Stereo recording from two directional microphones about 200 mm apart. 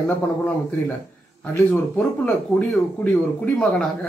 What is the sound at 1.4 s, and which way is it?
Speech, 10° left (ahead or behind).